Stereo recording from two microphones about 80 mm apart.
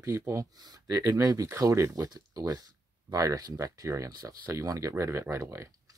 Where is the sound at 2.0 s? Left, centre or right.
Right.